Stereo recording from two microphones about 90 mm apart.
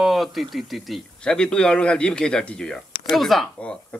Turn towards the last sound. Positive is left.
turn(degrees=0)  # may be behind; listen again after turning